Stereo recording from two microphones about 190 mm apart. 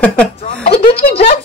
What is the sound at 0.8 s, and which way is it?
Speech, 30° left (ahead or behind).